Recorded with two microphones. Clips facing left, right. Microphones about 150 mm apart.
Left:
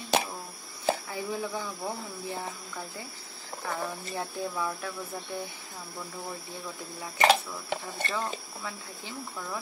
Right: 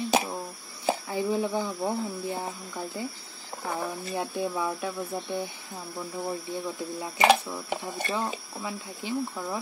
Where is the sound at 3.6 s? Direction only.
15° right (ahead or behind).